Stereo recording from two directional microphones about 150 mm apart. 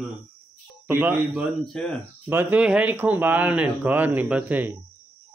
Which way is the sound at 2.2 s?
10° right (ahead or behind).